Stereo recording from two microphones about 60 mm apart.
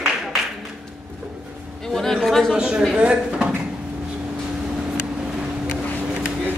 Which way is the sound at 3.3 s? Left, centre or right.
Centre.